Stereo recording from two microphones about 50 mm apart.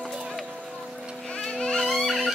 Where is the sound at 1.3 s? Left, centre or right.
Centre.